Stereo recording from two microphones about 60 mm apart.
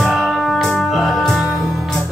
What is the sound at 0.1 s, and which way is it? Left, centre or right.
Music, centre.